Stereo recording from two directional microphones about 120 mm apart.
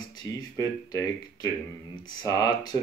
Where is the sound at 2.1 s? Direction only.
35° left (ahead or behind).